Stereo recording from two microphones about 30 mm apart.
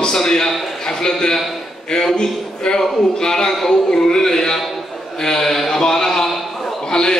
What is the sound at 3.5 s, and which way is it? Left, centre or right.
Speech, centre.